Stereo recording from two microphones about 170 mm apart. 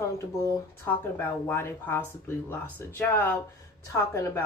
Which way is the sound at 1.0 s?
10° left (ahead or behind).